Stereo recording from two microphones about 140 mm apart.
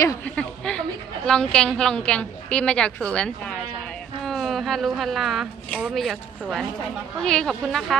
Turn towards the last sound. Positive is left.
turn(degrees=0)  # may be behind; listen again after turning